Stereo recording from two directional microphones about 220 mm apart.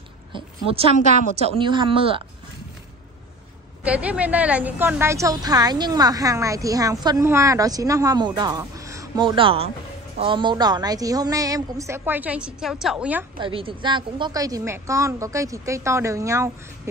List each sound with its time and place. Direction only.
0.3 s a woman's voice: 25° right (ahead or behind)
3.8 s a woman's voice: 5° right (ahead or behind)
13.4 s a woman's voice: 25° right (ahead or behind)